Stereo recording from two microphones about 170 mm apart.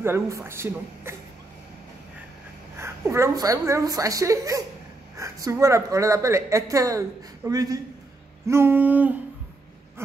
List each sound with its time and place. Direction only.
0.0 s speech: 15° right (ahead or behind)
2.8 s a woman's voice: 15° right (ahead or behind)